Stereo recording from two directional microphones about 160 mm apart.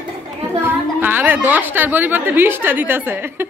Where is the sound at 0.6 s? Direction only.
10° right (ahead or behind).